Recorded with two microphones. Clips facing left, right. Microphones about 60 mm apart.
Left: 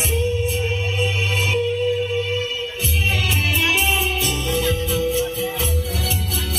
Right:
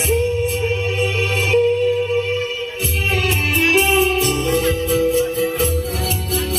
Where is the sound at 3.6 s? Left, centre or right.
Right.